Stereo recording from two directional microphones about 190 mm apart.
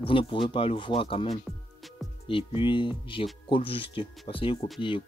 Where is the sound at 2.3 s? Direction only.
30° left (ahead or behind).